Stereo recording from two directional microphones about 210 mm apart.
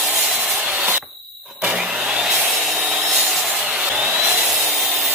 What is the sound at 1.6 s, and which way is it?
Wood, 5° right (ahead or behind).